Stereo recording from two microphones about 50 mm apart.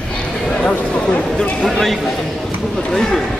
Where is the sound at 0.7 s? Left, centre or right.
Left.